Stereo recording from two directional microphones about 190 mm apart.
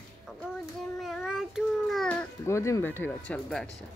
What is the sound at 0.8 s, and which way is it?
Child singing, centre (ahead or behind).